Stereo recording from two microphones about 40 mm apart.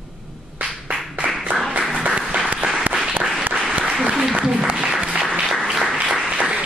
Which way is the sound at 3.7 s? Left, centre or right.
Right.